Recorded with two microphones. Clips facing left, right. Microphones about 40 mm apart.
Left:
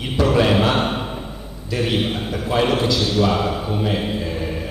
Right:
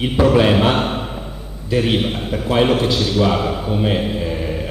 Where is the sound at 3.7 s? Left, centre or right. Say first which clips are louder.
Right 6 dB; centre.